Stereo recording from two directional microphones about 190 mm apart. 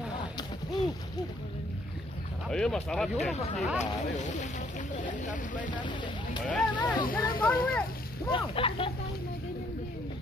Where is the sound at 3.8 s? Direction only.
40° left (ahead or behind).